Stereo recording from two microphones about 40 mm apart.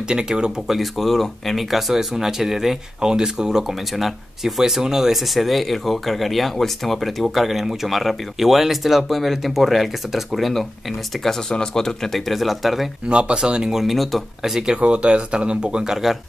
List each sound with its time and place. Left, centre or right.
0.1 s speech: right
0.7 s speech: centre
1.7 s speech: centre
3.0 s speech: centre
3.9 s speech: centre
5.3 s speech: centre
11.2 s speech: centre
12.3 s speech: centre
13.1 s speech: right
13.8 s speech: centre
14.4 s speech: centre
14.8 s speech: right; by 16.2 s centre